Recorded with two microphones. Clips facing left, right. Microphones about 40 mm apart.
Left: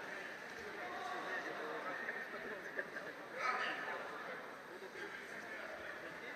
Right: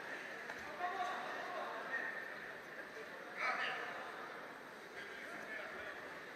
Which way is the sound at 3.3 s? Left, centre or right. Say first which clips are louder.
Even; centre.